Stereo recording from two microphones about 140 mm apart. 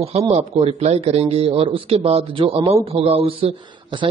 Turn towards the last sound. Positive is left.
turn(degrees=-40)  # may be behind; listen again after turning